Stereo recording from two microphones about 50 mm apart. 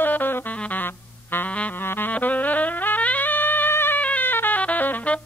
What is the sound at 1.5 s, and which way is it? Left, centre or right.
Music, left.